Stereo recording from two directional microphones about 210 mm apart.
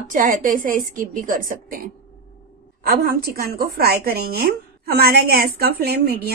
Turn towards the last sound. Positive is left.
turn(degrees=-45)  # may be behind; listen again after turning